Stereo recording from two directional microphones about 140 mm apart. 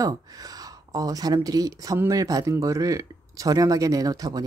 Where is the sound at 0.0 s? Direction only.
25° right (ahead or behind).